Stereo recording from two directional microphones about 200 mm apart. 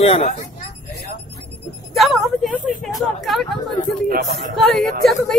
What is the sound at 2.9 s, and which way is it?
Speech, centre (ahead or behind).